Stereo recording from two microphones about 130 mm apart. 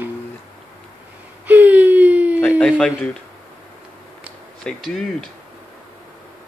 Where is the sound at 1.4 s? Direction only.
10° right (ahead or behind).